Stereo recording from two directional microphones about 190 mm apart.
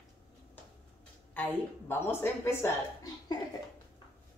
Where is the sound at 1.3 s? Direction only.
10° left (ahead or behind).